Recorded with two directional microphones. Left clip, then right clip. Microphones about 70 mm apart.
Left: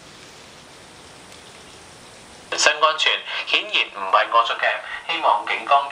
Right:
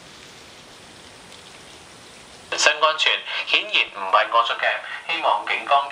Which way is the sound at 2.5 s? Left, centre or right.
Centre.